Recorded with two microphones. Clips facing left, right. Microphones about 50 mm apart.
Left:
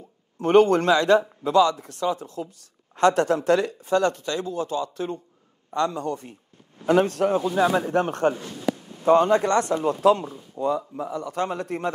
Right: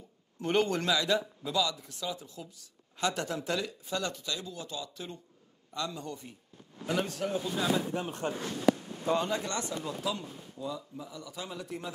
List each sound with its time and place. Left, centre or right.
0.4 s speech: left